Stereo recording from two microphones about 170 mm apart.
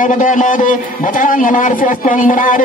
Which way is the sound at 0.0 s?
50° left (ahead or behind).